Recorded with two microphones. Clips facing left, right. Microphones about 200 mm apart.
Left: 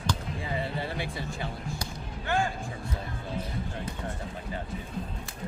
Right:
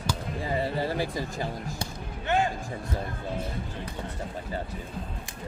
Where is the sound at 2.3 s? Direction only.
20° right (ahead or behind).